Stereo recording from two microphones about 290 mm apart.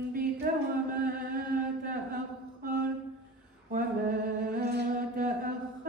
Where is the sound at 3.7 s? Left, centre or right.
Right.